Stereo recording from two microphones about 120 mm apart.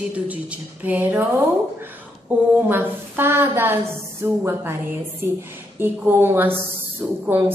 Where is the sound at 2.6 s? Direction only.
15° right (ahead or behind).